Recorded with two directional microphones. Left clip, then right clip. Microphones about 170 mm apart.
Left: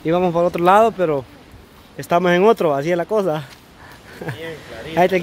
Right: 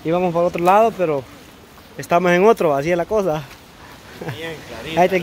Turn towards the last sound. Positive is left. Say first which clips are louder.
# even
turn(degrees=15)  # may be behind; listen again after turning